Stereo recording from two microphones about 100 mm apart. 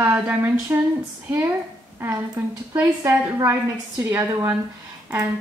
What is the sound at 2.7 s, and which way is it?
A woman's voice, 25° right (ahead or behind).